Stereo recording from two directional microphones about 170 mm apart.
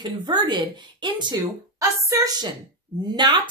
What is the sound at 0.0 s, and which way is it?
A woman's voice, 25° right (ahead or behind).